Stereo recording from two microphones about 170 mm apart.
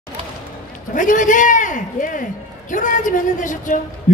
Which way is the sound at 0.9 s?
50° left (ahead or behind).